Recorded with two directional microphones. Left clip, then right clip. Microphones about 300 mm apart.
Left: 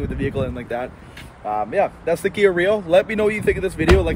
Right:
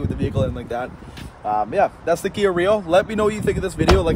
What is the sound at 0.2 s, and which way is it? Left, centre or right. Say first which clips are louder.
Speech: right 1 dB; centre.